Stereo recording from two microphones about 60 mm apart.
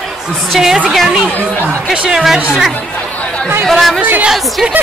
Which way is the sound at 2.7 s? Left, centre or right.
Left.